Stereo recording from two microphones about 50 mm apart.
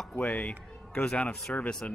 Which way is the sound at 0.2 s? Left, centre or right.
Left.